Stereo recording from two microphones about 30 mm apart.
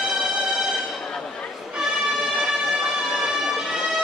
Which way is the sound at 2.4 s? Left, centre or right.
Centre.